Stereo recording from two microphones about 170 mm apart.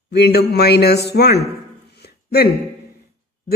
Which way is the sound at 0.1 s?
70° left (ahead or behind).